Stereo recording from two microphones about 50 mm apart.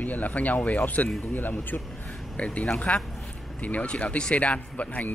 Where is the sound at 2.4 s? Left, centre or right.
Left.